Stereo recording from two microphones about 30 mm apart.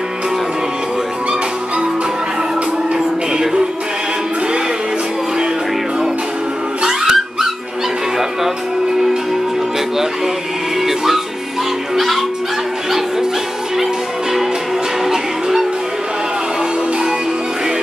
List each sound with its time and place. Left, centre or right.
6.8 s music: centre
10.8 s music: centre